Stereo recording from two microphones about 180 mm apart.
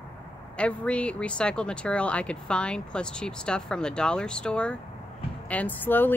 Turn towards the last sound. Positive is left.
turn(degrees=10)  # may be behind; listen again after turning